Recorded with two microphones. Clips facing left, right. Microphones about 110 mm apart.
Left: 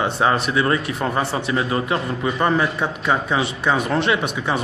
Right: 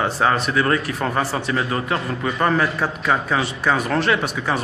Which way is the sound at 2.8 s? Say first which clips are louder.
Even; centre (ahead or behind).